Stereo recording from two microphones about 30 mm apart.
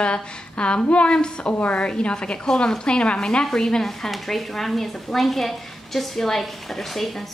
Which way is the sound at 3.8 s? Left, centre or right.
Centre.